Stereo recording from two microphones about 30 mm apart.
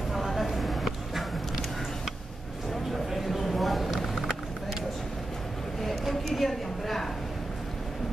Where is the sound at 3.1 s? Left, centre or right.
Centre.